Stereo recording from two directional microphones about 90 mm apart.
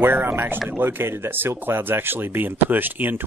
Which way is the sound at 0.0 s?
20° right (ahead or behind).